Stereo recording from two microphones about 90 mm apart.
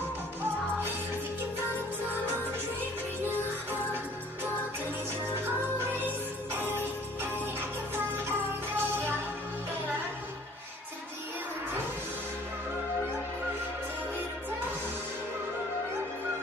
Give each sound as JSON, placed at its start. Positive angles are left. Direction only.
{"t": 5.2, "sound": "music", "side_deg": -20}